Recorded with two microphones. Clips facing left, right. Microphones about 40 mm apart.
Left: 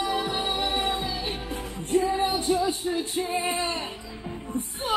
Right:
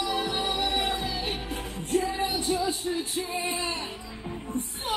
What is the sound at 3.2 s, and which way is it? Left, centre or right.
Singing, left.